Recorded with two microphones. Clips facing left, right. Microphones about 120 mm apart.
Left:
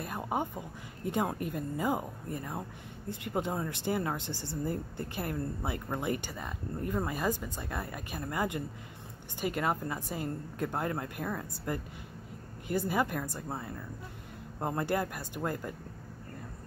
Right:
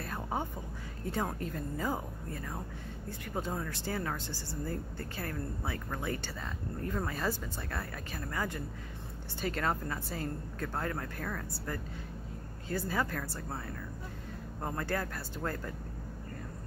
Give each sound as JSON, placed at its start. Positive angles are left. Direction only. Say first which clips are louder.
{"t": 0.0, "sound": "speech", "louder": "left 3 dB", "side_deg": 15}